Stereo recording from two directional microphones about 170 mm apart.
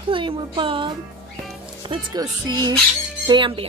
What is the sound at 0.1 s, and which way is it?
Speech, 30° right (ahead or behind).